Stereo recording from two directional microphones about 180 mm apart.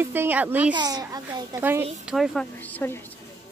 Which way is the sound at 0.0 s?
10° right (ahead or behind).